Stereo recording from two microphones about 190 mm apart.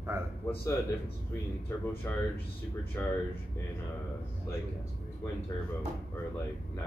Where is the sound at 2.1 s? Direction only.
10° left (ahead or behind).